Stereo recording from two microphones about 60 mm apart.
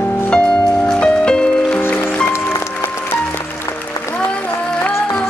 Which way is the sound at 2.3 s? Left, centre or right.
Left.